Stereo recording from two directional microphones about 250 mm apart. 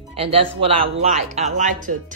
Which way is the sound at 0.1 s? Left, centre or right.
Right.